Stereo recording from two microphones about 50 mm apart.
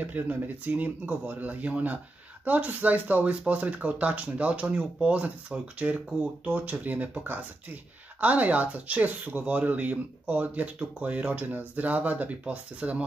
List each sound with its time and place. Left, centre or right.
0.0 s speech: right